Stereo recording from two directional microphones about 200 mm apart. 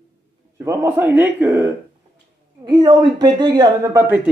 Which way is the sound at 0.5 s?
10° right (ahead or behind).